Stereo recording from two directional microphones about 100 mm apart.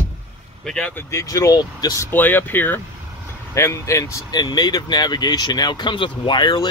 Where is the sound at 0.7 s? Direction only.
10° left (ahead or behind).